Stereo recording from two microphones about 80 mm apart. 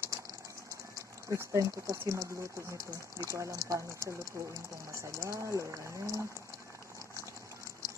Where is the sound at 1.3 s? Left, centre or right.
Right.